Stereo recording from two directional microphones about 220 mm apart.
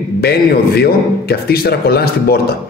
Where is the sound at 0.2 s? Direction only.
45° left (ahead or behind).